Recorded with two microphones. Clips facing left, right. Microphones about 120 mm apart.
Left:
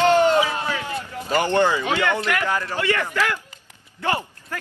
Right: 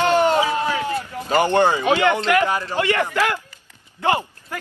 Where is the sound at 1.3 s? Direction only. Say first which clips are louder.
Right 2 dB; 15° right (ahead or behind).